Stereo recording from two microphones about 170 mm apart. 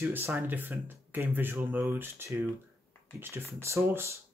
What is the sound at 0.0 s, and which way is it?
Speech, 10° right (ahead or behind).